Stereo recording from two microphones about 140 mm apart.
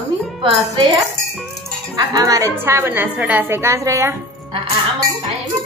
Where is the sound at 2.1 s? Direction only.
25° right (ahead or behind).